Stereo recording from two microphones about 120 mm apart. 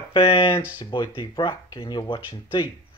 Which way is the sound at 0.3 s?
40° left (ahead or behind).